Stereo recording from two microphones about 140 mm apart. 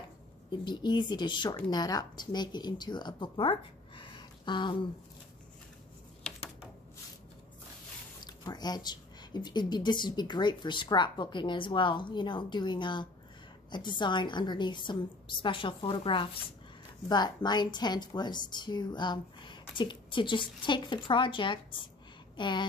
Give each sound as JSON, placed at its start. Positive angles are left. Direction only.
{"t": 0.5, "sound": "speech", "side_deg": 35}
{"t": 8.3, "sound": "speech", "side_deg": 30}